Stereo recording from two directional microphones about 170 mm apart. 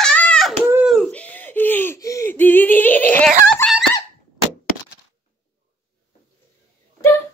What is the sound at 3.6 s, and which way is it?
Fowl, 15° left (ahead or behind).